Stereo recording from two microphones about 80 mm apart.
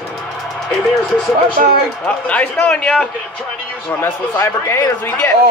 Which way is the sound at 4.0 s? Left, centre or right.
Left.